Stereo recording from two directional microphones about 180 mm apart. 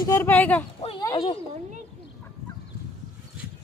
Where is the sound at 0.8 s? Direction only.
30° left (ahead or behind).